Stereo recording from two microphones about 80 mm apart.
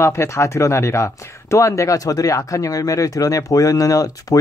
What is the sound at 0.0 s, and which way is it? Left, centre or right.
Speech, left.